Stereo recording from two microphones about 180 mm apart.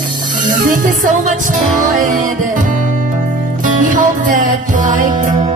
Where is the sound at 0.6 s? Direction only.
45° right (ahead or behind).